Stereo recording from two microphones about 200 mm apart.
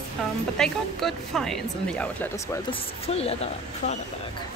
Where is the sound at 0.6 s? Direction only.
Centre (ahead or behind).